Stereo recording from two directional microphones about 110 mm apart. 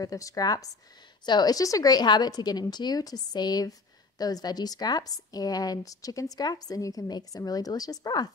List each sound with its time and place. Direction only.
0.0 s a woman's voice: 30° left (ahead or behind)